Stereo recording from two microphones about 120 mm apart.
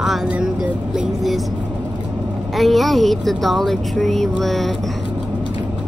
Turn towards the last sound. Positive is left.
turn(degrees=0)  # may be behind; listen again after turning